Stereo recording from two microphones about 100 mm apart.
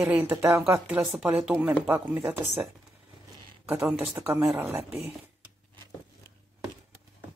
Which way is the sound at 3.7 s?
15° right (ahead or behind).